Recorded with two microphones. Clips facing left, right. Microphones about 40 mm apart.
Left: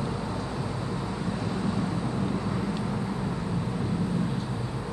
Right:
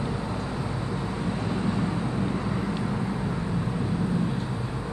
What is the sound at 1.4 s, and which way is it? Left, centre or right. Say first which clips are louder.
Vehicle: right 2 dB; centre.